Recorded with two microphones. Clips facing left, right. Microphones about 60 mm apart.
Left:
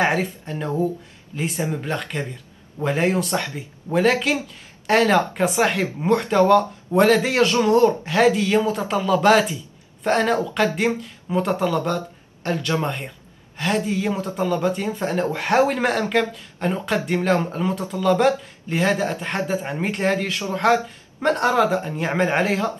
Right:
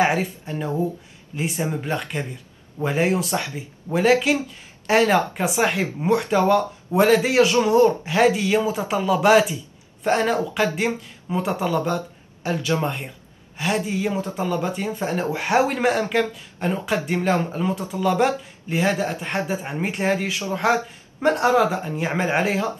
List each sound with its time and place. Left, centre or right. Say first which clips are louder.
0.0 s speech: even; centre
13.8 s speech: left 1 dB; centre